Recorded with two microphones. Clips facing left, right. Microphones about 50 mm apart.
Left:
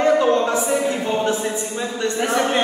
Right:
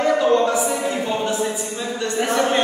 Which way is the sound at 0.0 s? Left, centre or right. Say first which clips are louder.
Left 1 dB; centre.